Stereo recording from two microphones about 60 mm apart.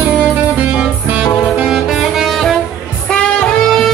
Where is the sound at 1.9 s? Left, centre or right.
Centre.